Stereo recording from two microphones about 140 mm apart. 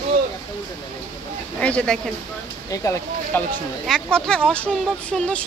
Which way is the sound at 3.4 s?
5° left (ahead or behind).